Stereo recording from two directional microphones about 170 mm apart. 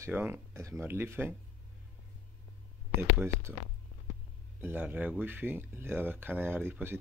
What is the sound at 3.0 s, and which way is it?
Speech, 15° right (ahead or behind).